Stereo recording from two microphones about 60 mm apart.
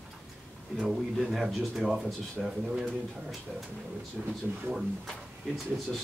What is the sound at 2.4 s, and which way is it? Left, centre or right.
Speech, centre.